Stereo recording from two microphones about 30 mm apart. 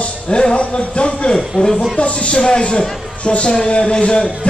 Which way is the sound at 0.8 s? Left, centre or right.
Left.